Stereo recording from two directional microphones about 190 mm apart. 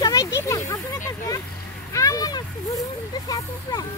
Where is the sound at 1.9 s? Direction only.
15° left (ahead or behind).